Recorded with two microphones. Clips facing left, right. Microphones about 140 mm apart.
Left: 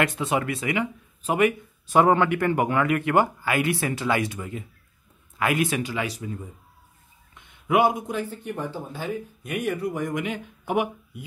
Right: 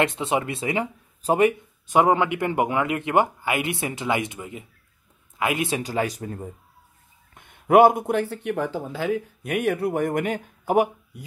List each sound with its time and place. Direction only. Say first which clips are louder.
0.0 s speech: right 1 dB; 25° right (ahead or behind)
1.9 s speech: even; 15° right (ahead or behind)
5.8 s speech: right 3 dB; 40° right (ahead or behind)